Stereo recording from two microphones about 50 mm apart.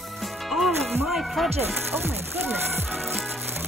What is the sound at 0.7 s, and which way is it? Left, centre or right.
Music, right.